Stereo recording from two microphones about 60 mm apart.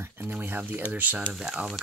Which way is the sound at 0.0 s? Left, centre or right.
Right.